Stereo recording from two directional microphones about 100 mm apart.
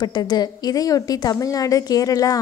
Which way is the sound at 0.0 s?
45° left (ahead or behind).